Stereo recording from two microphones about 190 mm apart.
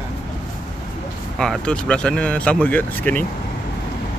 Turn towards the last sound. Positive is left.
turn(degrees=10)  # may be behind; listen again after turning